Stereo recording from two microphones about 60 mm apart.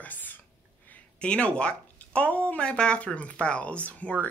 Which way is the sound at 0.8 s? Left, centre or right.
Left.